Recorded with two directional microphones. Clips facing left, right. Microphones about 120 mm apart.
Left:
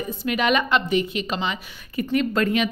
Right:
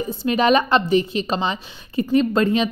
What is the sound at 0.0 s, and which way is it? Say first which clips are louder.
A woman's voice: right 4 dB; 30° right (ahead or behind).